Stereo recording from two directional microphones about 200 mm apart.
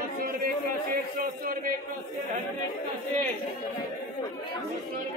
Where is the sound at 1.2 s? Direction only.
45° right (ahead or behind).